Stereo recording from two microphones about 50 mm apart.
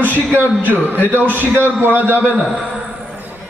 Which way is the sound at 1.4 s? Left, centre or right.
Right.